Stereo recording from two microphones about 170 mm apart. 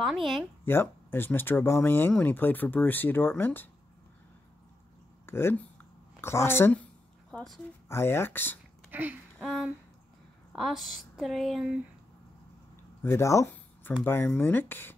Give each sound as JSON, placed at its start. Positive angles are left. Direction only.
{"t": 0.0, "sound": "a woman's voice", "side_deg": 0}
{"t": 0.7, "sound": "speech", "side_deg": 15}
{"t": 5.2, "sound": "a sound", "side_deg": 15}
{"t": 7.9, "sound": "speech", "side_deg": 15}
{"t": 8.9, "sound": "a sound", "side_deg": -10}
{"t": 9.4, "sound": "a woman's voice", "side_deg": 0}
{"t": 13.0, "sound": "speech", "side_deg": 15}